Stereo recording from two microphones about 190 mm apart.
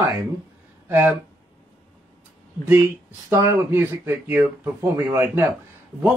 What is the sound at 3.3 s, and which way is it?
Speech, 15° right (ahead or behind).